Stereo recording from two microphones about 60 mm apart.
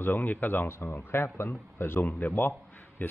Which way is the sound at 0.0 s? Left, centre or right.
Left.